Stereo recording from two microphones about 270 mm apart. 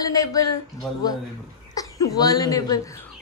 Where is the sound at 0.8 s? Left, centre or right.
Centre.